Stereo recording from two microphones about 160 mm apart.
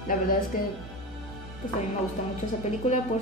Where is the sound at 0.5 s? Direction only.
60° left (ahead or behind).